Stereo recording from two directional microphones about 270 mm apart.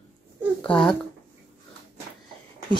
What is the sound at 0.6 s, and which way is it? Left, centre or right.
Speech, centre.